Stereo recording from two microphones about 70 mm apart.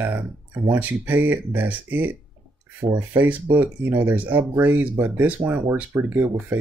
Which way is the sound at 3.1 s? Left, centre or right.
Right.